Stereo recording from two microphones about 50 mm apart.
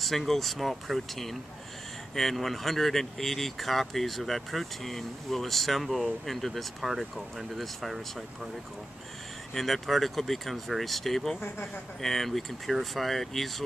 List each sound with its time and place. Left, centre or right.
0.0 s speech: centre
9.5 s speech: centre
11.4 s speech: left
12.0 s speech: centre